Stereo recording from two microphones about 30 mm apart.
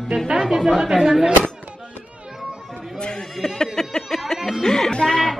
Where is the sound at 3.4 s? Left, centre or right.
Centre.